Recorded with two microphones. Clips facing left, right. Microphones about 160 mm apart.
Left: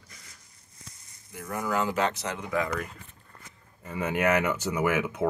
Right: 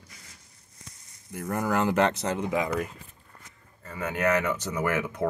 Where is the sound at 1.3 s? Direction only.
50° right (ahead or behind).